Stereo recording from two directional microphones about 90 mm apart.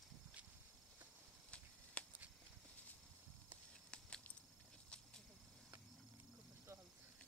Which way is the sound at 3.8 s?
10° left (ahead or behind).